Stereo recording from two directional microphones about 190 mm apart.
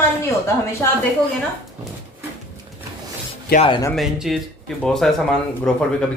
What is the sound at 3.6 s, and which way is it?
Speech, 25° left (ahead or behind).